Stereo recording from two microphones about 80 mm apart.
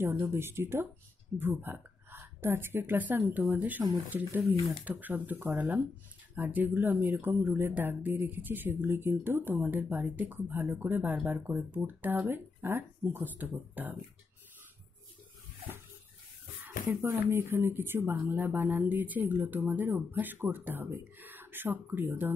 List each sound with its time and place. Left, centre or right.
0.0 s a woman's voice: right
16.9 s speech: right